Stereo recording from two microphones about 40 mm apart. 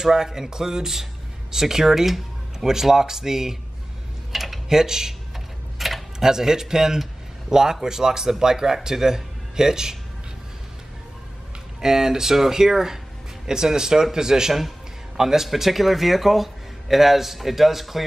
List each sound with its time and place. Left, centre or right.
0.0 s speech: centre
4.3 s tick-tock: centre
6.1 s speech: centre
11.8 s speech: centre